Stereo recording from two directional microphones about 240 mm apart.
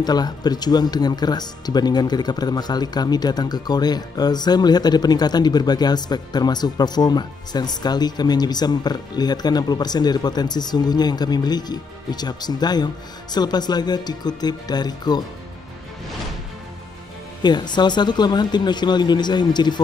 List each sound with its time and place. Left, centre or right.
0.0 s speech: centre
17.4 s speech: centre